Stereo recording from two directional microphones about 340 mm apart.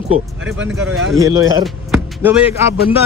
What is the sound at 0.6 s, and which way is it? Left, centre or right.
Speech, centre.